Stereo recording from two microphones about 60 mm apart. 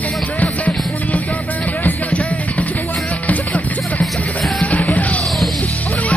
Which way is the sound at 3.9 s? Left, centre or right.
Centre.